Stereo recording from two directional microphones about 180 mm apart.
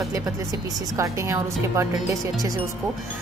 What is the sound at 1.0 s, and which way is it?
Speech, 15° right (ahead or behind).